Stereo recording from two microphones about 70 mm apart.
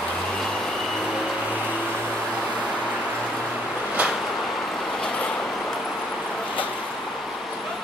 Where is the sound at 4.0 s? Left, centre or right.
Centre.